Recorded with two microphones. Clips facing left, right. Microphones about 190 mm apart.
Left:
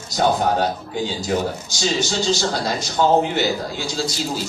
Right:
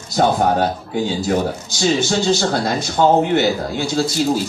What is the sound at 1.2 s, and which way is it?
A man's voice, 55° right (ahead or behind).